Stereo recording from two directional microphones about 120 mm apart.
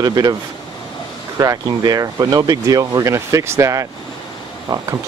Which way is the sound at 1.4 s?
30° right (ahead or behind).